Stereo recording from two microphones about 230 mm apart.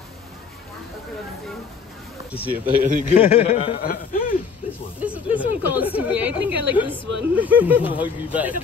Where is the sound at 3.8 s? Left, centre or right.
Left.